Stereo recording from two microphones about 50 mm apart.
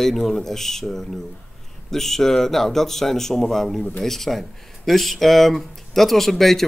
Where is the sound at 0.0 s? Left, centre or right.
Centre.